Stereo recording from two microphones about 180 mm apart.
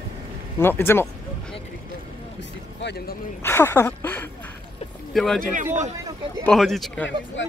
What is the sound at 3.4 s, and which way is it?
Speech, 15° left (ahead or behind).